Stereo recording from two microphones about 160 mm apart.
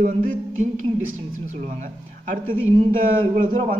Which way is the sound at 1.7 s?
55° right (ahead or behind).